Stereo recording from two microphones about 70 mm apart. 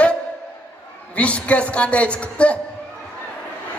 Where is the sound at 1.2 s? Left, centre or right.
Centre.